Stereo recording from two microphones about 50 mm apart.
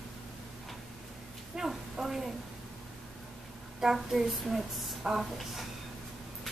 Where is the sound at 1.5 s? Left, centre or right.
Centre.